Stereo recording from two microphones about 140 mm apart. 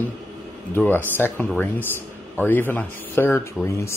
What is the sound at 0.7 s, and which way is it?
Speech, 15° left (ahead or behind).